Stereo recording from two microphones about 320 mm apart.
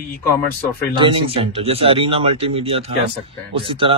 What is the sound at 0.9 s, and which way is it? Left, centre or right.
Speech, centre.